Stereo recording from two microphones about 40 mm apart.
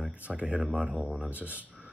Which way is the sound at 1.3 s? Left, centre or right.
Right.